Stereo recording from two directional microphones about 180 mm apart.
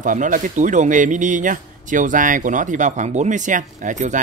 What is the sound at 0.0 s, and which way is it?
Speech, 45° right (ahead or behind).